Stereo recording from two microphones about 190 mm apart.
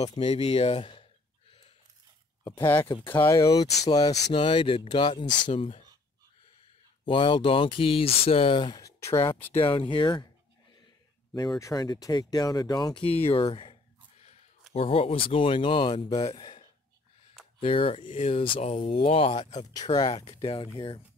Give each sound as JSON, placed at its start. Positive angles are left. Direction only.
{"t": 0.1, "sound": "speech", "side_deg": 30}
{"t": 2.4, "sound": "speech", "side_deg": 15}
{"t": 7.1, "sound": "speech", "side_deg": 25}